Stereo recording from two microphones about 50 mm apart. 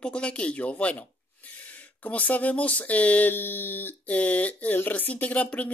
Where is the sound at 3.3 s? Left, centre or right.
Left.